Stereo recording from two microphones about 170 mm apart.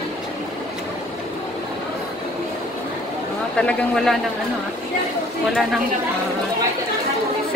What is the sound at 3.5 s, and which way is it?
Speech, 5° left (ahead or behind).